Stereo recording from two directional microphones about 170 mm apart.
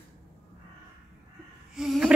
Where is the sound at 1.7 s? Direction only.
5° right (ahead or behind).